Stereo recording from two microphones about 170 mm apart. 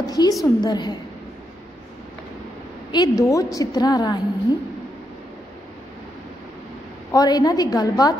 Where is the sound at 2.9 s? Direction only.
20° left (ahead or behind).